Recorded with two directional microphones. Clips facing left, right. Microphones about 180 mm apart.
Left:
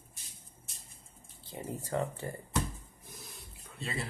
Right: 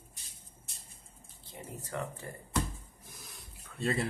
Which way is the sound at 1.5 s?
30° left (ahead or behind).